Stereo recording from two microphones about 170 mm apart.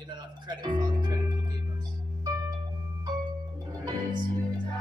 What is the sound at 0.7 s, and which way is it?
Music, 25° right (ahead or behind).